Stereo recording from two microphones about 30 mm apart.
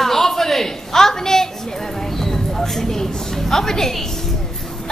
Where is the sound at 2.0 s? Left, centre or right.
Centre.